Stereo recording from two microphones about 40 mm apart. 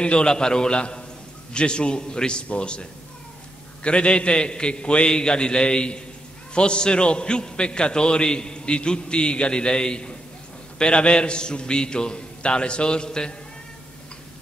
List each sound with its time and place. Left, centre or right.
0.0 s a man's voice: left